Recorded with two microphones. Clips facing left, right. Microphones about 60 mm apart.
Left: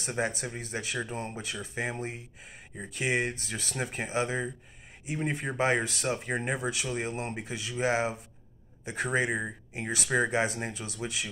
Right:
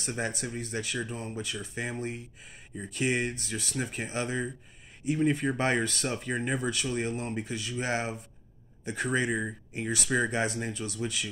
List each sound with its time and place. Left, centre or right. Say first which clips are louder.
0.0 s speech: left 2 dB; left
5.9 s speech: left 1 dB; centre
6.2 s speech: right 1 dB; left